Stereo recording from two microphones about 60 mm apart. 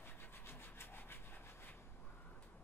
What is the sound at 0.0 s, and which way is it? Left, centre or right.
Rub, left.